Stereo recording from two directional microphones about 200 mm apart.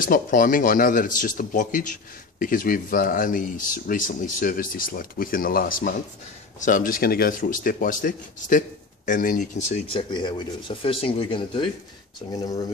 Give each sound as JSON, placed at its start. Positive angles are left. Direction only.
{"t": 0.0, "sound": "speech", "side_deg": 45}
{"t": 10.1, "sound": "speech", "side_deg": 25}